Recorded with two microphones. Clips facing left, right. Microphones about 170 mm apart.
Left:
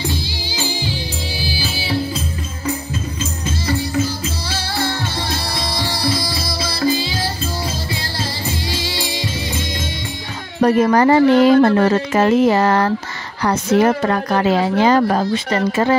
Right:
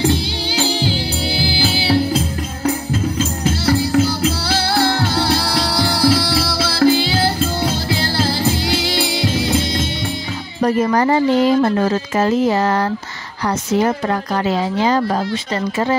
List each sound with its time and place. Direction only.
0.0 s music: 70° right (ahead or behind)
10.6 s speech: 65° left (ahead or behind)